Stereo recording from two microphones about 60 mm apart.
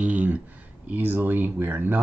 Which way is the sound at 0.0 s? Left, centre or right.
Right.